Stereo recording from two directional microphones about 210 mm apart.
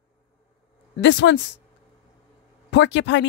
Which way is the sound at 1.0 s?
60° left (ahead or behind).